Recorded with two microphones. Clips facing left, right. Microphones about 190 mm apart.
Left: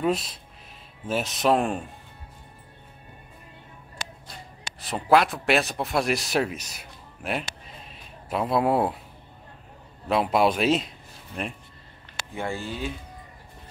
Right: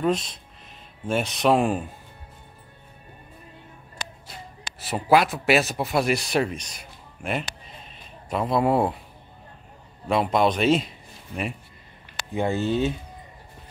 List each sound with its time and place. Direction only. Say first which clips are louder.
0.0 s speech: right 1 dB; 5° left (ahead or behind)
4.7 s speech: right 1 dB; 5° right (ahead or behind)
7.8 s a sound: even; centre (ahead or behind)
10.0 s speech: right 1 dB; 5° left (ahead or behind)
12.4 s speech: right 8 dB; 20° right (ahead or behind)